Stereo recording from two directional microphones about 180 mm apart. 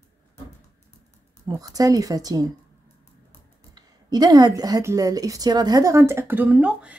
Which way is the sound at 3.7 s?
20° right (ahead or behind).